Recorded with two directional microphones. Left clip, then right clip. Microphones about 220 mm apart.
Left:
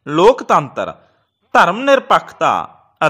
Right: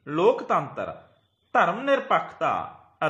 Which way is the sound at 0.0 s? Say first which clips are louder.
Left 11 dB; 50° left (ahead or behind).